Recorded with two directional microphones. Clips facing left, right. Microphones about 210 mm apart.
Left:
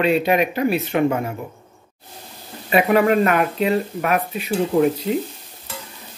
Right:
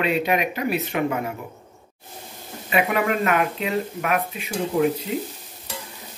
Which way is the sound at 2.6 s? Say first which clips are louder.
Left 6 dB; 35° left (ahead or behind).